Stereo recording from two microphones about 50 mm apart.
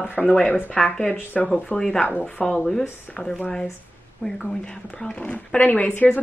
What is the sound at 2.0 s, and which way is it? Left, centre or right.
Speech, left.